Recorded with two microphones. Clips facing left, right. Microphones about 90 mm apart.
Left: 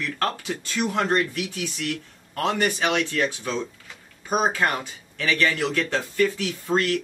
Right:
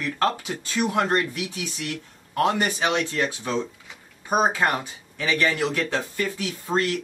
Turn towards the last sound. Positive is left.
turn(degrees=-20)  # may be behind; listen again after turning